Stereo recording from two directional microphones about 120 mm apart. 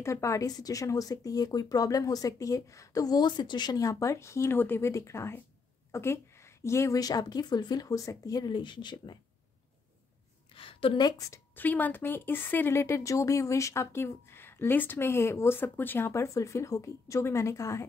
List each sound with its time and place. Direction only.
0.0 s speech: 25° left (ahead or behind)
5.9 s a sound: 20° left (ahead or behind)
6.6 s speech: 25° left (ahead or behind); by 9.2 s 40° left (ahead or behind)
10.5 s a woman's voice: 50° left (ahead or behind); by 11.6 s 25° left (ahead or behind)
11.6 s speech: 15° left (ahead or behind)